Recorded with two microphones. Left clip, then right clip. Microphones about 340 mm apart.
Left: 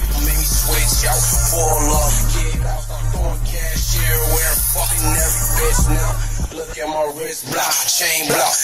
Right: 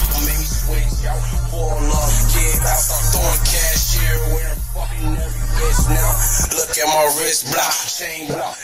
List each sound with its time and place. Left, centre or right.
1.8 s music: centre
6.8 s music: right
7.5 s music: centre